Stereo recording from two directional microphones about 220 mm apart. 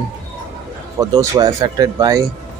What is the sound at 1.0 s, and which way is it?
Speech, 15° right (ahead or behind).